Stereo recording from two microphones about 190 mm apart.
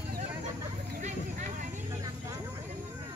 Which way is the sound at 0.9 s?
40° right (ahead or behind).